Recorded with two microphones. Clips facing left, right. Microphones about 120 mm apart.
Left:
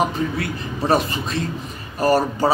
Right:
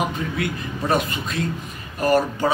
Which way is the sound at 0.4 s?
35° left (ahead or behind).